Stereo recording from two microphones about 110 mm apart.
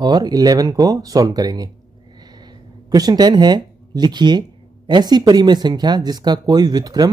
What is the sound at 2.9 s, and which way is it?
Speech, 35° right (ahead or behind).